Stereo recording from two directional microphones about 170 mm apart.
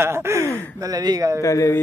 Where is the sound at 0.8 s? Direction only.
20° right (ahead or behind).